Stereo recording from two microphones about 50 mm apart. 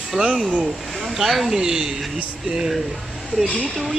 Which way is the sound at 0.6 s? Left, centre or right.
Centre.